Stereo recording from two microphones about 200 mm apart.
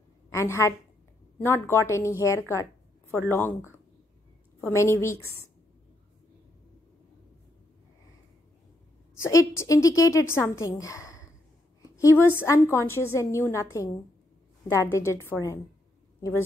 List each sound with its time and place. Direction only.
0.3 s a woman's voice: 15° left (ahead or behind)
9.2 s a woman's voice: 15° left (ahead or behind)